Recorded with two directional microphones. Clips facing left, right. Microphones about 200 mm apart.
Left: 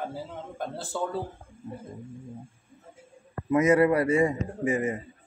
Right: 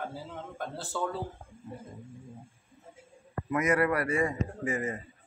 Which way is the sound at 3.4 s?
25° left (ahead or behind).